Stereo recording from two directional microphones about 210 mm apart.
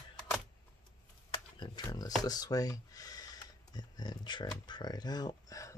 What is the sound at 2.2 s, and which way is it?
Speech, 20° left (ahead or behind).